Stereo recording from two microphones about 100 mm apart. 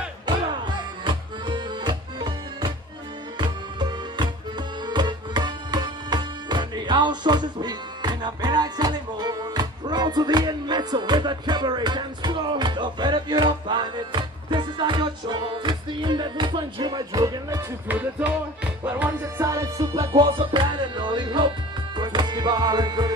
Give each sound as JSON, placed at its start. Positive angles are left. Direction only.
{"t": 0.3, "sound": "music", "side_deg": -50}
{"t": 17.8, "sound": "speech", "side_deg": -15}
{"t": 19.3, "sound": "music", "side_deg": -35}
{"t": 20.2, "sound": "music", "side_deg": -55}